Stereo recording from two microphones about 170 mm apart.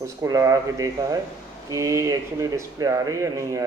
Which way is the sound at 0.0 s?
15° right (ahead or behind).